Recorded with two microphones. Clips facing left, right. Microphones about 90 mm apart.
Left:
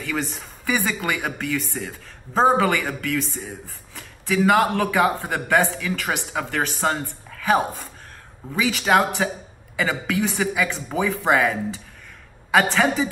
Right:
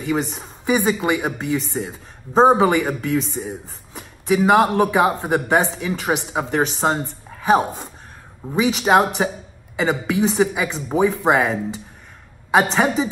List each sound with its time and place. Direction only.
0.0 s speech: 25° right (ahead or behind)